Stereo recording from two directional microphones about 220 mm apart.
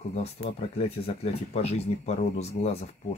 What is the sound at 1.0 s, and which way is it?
Speech, 30° left (ahead or behind).